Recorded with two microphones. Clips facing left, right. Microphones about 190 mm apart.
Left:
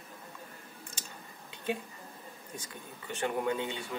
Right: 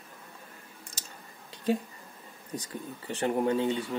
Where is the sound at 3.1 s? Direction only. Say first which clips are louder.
Right 5 dB; 35° right (ahead or behind).